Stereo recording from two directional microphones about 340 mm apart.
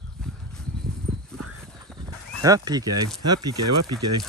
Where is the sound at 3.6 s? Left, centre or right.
Right.